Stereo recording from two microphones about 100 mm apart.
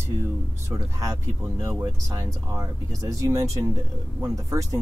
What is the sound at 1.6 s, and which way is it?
Speech, 35° right (ahead or behind).